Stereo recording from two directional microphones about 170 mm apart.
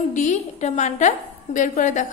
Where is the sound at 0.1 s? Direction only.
45° left (ahead or behind).